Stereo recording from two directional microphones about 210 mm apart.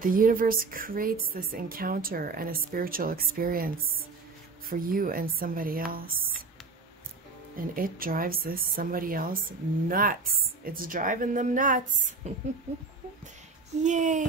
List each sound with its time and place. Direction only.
0.0 s a woman's voice: 40° right (ahead or behind)
7.5 s a woman's voice: 45° right (ahead or behind)
13.8 s a woman's voice: 35° right (ahead or behind)